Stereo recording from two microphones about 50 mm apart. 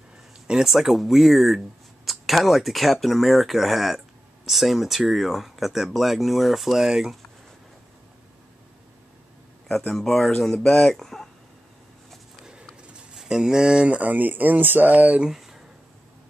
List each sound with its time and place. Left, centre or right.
0.5 s speech: centre
9.7 s speech: centre
12.8 s pigeon: centre
13.2 s speech: centre
13.9 s speech: right
15.2 s a sound: centre